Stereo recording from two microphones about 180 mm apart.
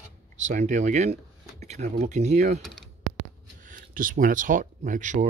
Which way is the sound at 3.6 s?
50° right (ahead or behind).